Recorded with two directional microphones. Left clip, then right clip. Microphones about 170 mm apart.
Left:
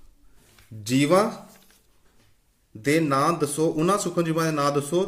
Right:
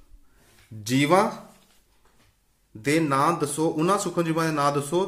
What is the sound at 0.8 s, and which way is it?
Speech, 15° left (ahead or behind).